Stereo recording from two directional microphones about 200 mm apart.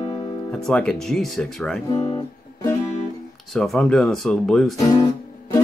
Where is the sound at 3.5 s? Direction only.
Centre (ahead or behind).